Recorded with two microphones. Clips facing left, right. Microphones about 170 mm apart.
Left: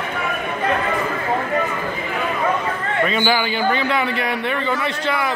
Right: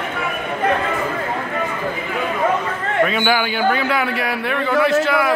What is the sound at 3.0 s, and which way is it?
A man's voice, 5° right (ahead or behind).